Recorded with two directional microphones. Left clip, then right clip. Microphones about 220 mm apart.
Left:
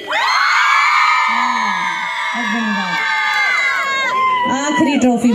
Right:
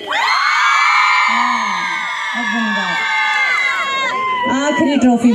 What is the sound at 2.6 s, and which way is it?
Crowd, 10° left (ahead or behind).